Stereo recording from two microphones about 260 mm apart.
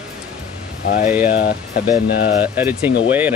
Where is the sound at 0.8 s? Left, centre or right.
Left.